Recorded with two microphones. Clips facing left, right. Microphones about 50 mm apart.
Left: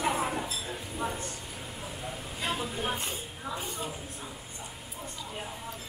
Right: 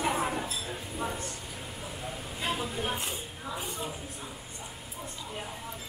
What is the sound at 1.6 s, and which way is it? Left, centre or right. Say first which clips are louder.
Vehicle: even; centre.